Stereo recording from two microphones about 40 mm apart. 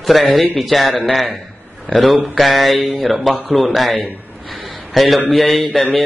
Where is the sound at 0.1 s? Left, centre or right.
Centre.